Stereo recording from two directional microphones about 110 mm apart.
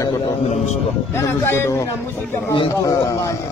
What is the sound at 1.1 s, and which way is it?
Speech, 20° left (ahead or behind).